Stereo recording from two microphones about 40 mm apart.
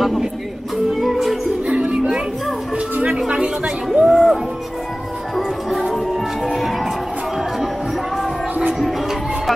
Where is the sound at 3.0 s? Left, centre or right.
Right.